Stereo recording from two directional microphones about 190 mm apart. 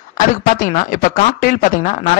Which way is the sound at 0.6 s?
45° left (ahead or behind).